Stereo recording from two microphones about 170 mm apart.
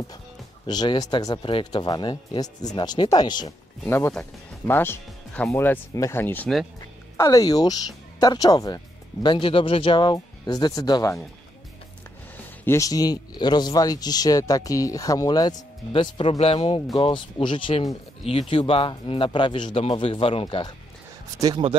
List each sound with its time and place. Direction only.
0.7 s speech: 25° left (ahead or behind)
12.6 s a man's voice: 20° left (ahead or behind)
21.4 s speech: 25° right (ahead or behind)